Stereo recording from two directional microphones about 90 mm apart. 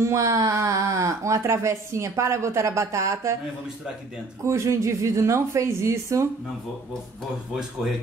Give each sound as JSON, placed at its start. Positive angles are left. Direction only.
{"t": 0.0, "sound": "speech", "side_deg": -35}
{"t": 4.5, "sound": "speech", "side_deg": -35}